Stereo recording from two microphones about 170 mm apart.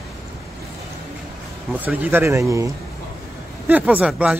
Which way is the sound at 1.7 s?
10° right (ahead or behind).